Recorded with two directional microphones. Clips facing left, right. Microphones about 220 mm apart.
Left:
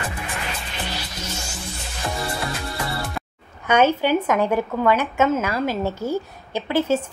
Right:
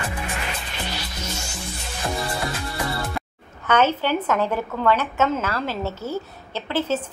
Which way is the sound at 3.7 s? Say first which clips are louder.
Left 2 dB; 10° left (ahead or behind).